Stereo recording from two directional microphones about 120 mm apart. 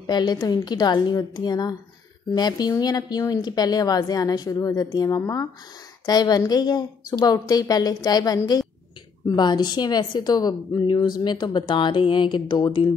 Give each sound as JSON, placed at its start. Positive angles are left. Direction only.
{"t": 0.0, "sound": "a woman's voice", "side_deg": 35}